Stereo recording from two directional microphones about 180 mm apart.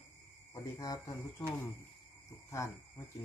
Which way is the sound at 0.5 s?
20° left (ahead or behind).